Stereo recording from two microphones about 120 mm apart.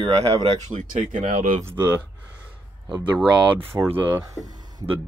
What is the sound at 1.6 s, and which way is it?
Speech, 25° right (ahead or behind).